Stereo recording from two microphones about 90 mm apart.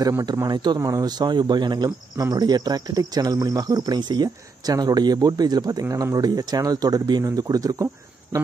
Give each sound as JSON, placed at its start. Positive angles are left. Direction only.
{"t": 0.5, "sound": "speech", "side_deg": -55}
{"t": 0.7, "sound": "speech", "side_deg": -40}